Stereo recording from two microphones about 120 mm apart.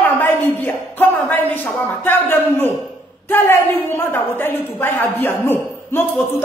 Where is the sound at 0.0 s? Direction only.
15° left (ahead or behind).